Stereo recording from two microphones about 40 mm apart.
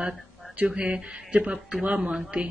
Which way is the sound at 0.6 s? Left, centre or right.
Right.